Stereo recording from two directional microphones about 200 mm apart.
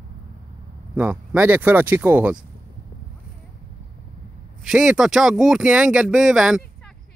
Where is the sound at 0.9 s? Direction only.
5° right (ahead or behind).